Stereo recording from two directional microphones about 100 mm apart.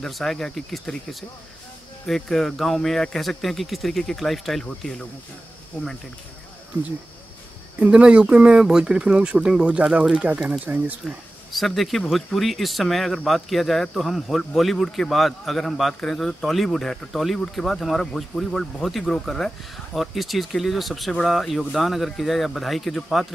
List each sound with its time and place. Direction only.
0.0 s speech: 5° left (ahead or behind)
2.0 s speech: 5° left (ahead or behind)
6.7 s speech: 15° left (ahead or behind)
7.8 s speech: 10° right (ahead or behind)
11.5 s speech: centre (ahead or behind)